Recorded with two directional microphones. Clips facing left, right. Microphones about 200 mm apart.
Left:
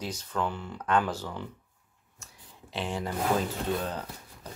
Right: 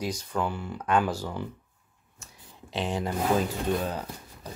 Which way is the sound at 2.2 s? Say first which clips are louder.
Right 2 dB; 20° right (ahead or behind).